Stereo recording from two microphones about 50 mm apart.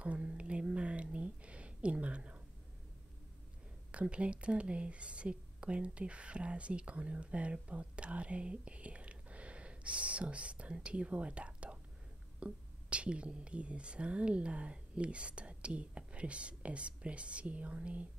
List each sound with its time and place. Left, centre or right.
0.0 s whispering: right
3.9 s speech: right